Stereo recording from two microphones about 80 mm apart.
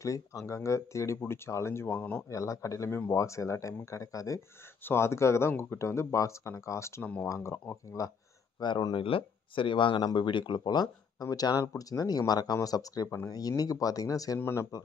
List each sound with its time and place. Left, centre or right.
0.0 s speech: left
1.9 s speech: centre
2.2 s speech: left
4.8 s speech: left
7.0 s speech: centre
7.2 s speech: left
8.5 s speech: left
9.6 s speech: left
14.4 s speech: left